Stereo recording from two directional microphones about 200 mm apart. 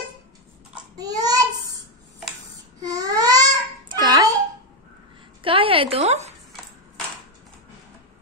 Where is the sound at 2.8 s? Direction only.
20° right (ahead or behind).